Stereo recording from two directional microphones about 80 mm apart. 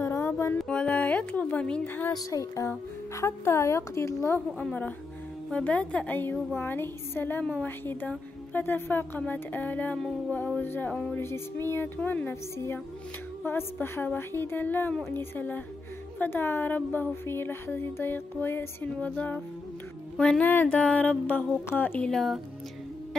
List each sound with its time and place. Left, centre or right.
0.0 s mantra: left
0.6 s speech: centre
2.3 s a woman's voice: left
5.5 s mantra: centre
6.5 s speech: left
10.3 s mantra: centre
10.7 s a woman's voice: left
18.9 s mantra: centre
21.6 s speech: left
22.1 s speech: centre